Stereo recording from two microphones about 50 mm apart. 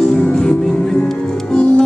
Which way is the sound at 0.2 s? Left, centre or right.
Left.